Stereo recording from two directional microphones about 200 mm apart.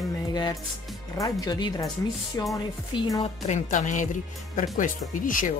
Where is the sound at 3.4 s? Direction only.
35° left (ahead or behind).